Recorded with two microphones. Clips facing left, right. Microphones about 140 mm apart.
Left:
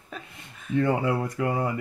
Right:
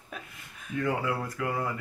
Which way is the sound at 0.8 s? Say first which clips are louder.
Left 6 dB; 25° left (ahead or behind).